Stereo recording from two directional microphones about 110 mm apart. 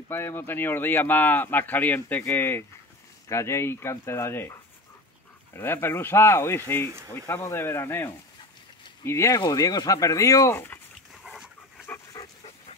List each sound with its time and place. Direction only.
0.1 s speech: 20° left (ahead or behind)
11.2 s dog: 5° right (ahead or behind)
12.2 s dog: 30° left (ahead or behind)